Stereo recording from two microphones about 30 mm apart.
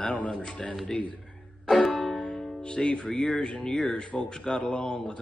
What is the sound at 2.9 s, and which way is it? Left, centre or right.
Speech, left.